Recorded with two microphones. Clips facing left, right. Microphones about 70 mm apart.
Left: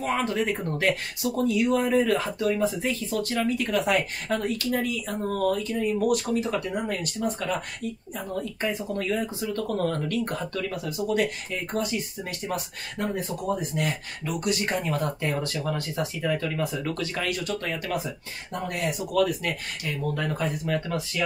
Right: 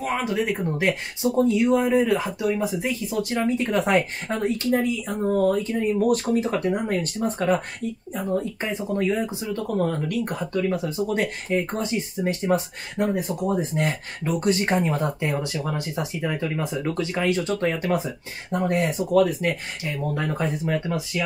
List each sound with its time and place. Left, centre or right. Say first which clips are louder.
0.0 s speech: right 1 dB; centre
0.8 s speech: right 2 dB; right
8.1 s speech: right 9 dB; right